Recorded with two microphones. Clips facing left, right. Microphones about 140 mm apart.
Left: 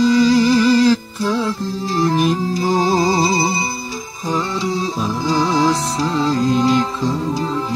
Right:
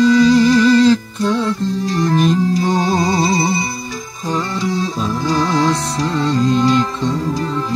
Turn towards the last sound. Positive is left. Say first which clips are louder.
# right 1 dB
turn(degrees=25)  # may be behind; listen again after turning